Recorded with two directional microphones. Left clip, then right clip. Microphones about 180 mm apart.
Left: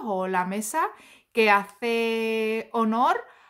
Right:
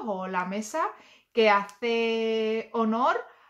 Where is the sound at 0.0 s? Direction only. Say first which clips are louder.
Left 4 dB; 40° left (ahead or behind).